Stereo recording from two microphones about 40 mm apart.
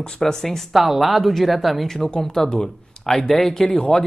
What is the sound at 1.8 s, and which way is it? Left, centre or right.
Speech, centre.